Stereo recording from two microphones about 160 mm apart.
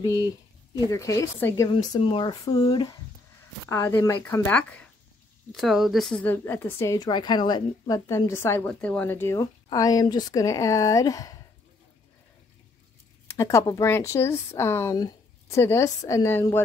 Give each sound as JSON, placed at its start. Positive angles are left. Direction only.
{"t": 0.0, "sound": "a woman's voice", "side_deg": 25}
{"t": 6.2, "sound": "a woman's voice", "side_deg": 15}
{"t": 13.3, "sound": "speech", "side_deg": 15}